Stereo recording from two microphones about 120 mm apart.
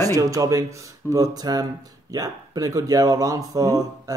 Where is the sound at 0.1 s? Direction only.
30° right (ahead or behind).